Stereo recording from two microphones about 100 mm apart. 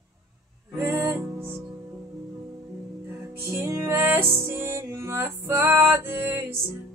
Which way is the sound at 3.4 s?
25° right (ahead or behind).